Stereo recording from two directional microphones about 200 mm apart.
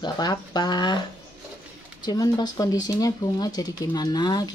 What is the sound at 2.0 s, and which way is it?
Speech, 20° left (ahead or behind).